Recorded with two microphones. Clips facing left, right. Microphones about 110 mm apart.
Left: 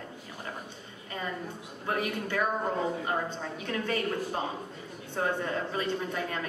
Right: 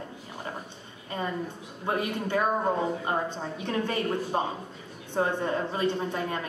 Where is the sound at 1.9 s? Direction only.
25° right (ahead or behind).